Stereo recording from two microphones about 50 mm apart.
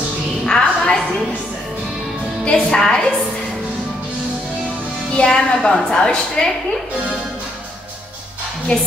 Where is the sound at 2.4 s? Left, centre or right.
Centre.